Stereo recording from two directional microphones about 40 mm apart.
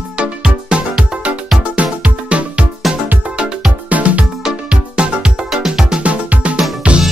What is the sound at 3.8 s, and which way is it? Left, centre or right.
Music, right.